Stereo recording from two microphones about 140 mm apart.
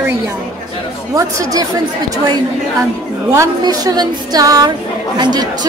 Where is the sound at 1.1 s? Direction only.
25° right (ahead or behind).